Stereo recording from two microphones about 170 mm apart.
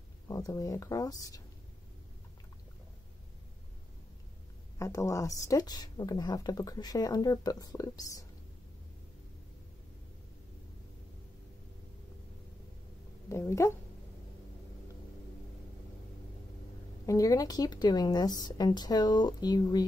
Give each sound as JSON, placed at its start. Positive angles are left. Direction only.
{"t": 0.3, "sound": "speech", "side_deg": 20}
{"t": 4.7, "sound": "speech", "side_deg": 20}
{"t": 13.3, "sound": "speech", "side_deg": 15}
{"t": 17.0, "sound": "speech", "side_deg": 20}